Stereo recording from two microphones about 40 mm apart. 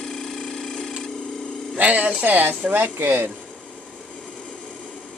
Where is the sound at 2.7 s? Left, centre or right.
Right.